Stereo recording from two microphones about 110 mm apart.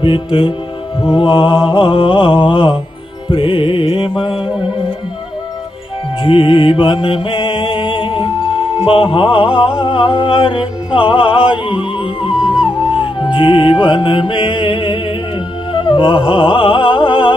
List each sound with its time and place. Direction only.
0.0 s music: 50° left (ahead or behind)
6.2 s mantra: 50° left (ahead or behind)
11.0 s music: 55° left (ahead or behind)
12.3 s music: 5° right (ahead or behind)
12.9 s music: 50° left (ahead or behind)